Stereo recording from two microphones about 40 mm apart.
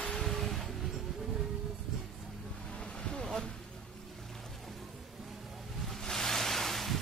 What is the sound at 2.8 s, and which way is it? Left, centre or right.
Vehicle, left.